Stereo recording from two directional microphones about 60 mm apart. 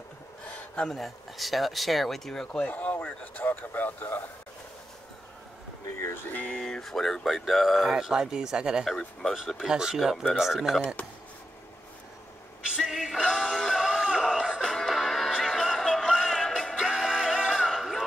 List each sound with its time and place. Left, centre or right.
0.7 s speech: centre
2.5 s speech: left
6.3 s speech: centre
6.6 s speech: centre
8.8 s speech: centre
9.7 s speech: centre
12.7 s music: centre
13.2 s synthetic singing: centre
13.8 s music: centre
14.6 s music: centre